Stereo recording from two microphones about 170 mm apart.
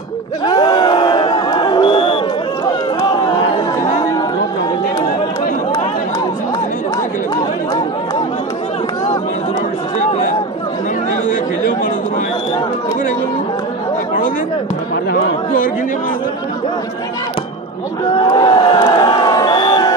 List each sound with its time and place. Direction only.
0.5 s a sound: 25° left (ahead or behind)
9.9 s chatter: 50° left (ahead or behind)
18.1 s crowd: 25° left (ahead or behind)